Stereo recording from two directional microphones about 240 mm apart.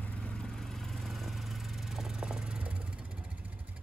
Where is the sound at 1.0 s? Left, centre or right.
Centre.